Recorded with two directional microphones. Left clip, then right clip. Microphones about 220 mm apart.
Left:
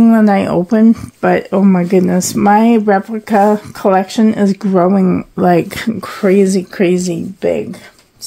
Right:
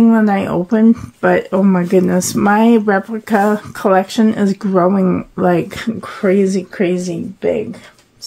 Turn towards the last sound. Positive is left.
turn(degrees=40)  # may be behind; listen again after turning